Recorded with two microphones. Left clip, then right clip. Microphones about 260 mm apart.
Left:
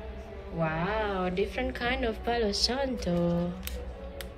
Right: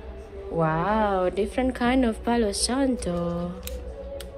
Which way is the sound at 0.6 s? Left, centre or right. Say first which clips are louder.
Right 6 dB; centre.